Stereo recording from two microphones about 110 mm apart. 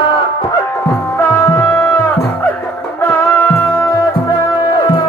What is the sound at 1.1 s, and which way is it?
Music, 25° left (ahead or behind).